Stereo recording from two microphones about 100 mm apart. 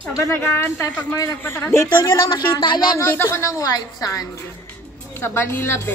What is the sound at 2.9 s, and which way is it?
A woman's voice, 25° left (ahead or behind).